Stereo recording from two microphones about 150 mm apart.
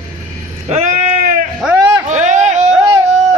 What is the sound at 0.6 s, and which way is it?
Sheep, 45° right (ahead or behind).